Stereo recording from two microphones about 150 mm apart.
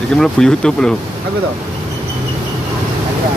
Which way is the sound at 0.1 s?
5° left (ahead or behind).